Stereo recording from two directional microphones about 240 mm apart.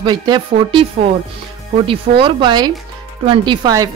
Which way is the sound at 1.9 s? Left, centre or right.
Right.